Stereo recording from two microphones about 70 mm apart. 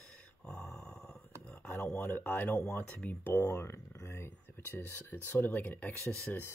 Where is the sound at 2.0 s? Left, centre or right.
Left.